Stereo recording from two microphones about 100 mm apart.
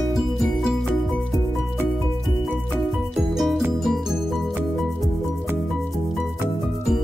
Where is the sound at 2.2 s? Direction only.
Centre (ahead or behind).